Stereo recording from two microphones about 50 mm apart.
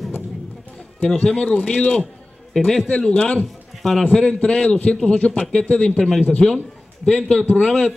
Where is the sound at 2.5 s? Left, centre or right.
Centre.